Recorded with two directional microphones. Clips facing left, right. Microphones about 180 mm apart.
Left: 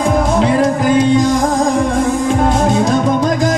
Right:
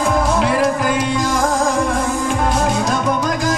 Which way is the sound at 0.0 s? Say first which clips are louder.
Left 3 dB; 25° left (ahead or behind).